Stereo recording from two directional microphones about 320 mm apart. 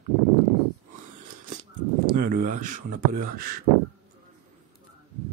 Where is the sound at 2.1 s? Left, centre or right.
Right.